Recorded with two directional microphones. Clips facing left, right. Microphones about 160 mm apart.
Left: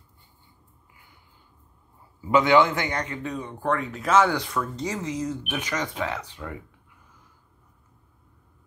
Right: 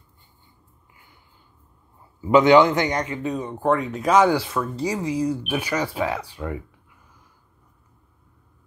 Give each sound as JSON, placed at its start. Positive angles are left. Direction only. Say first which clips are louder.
{"t": 2.3, "sound": "a man's voice", "louder": "right 5 dB", "side_deg": -20}